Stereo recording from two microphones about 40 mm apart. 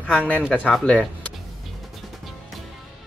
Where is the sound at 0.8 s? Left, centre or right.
Left.